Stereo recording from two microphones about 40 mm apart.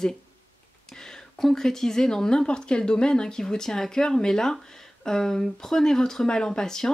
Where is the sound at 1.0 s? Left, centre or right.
Centre.